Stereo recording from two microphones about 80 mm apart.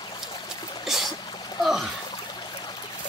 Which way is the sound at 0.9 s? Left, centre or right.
Centre.